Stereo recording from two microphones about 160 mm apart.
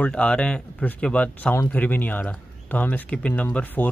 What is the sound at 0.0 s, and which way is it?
Speech, 5° left (ahead or behind).